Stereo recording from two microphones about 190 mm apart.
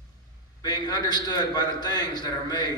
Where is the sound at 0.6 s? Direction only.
20° left (ahead or behind).